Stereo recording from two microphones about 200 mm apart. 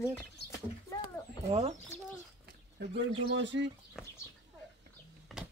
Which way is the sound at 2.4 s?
55° right (ahead or behind).